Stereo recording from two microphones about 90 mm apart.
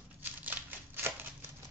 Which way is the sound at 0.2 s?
20° right (ahead or behind).